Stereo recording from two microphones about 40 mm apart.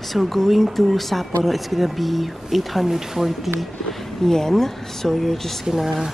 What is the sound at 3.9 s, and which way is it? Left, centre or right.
Speech, centre.